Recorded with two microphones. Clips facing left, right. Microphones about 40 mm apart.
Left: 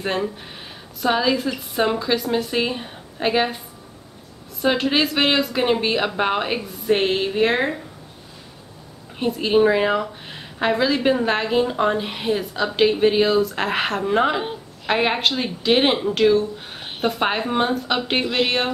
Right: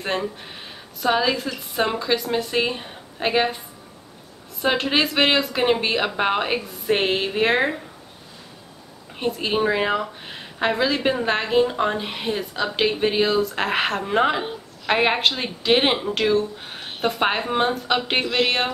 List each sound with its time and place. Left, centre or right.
0.0 s a woman's voice: centre
9.2 s a woman's voice: centre